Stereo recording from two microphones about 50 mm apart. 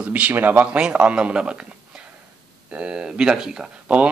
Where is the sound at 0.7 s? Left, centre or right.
Right.